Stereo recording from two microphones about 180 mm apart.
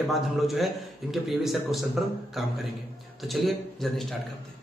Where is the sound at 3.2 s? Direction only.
Centre (ahead or behind).